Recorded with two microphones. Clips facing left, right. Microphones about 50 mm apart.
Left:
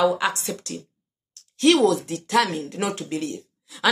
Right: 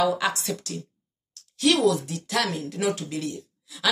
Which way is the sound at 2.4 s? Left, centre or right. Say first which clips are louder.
Left 3 dB; left.